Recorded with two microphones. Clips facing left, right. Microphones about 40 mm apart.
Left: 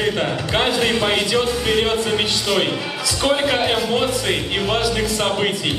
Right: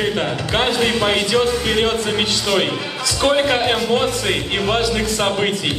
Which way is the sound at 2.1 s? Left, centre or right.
Centre.